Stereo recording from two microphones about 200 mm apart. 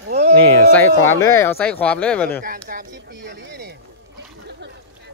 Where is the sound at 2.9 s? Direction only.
60° right (ahead or behind).